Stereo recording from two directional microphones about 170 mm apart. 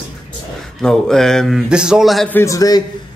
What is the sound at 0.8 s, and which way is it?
A man's voice, 5° left (ahead or behind).